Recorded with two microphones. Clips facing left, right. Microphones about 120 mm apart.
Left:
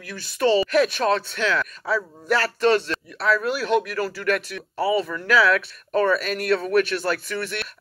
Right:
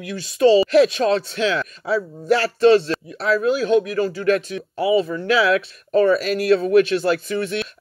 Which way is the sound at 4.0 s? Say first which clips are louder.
Right 5 dB; 25° right (ahead or behind).